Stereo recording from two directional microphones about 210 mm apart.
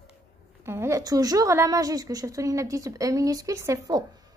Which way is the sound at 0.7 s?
10° right (ahead or behind).